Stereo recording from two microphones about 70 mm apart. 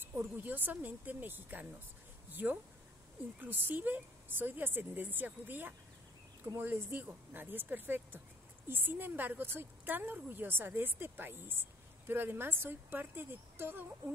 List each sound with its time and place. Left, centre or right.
0.0 s speech: right
3.3 s a woman's voice: right